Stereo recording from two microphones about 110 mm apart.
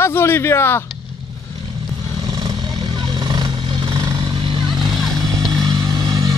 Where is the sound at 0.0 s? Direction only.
20° left (ahead or behind).